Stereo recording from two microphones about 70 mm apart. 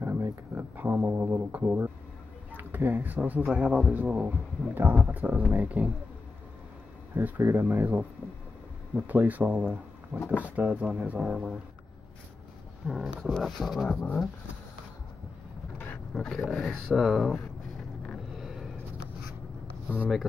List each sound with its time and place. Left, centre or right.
0.0 s a sound: right
1.0 s speech: right
7.2 s speech: right
10.1 s speech: left
10.4 s speech: right
12.8 s speech: centre
13.8 s speech: centre
16.2 s speech: centre
16.9 s speech: centre
18.3 s a sound: centre